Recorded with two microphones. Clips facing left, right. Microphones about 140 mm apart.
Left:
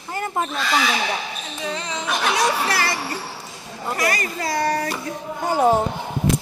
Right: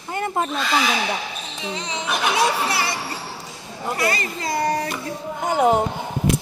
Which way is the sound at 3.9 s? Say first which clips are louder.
Left 1 dB; 25° right (ahead or behind).